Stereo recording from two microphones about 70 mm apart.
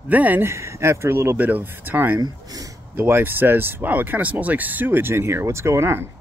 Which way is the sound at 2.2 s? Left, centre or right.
Right.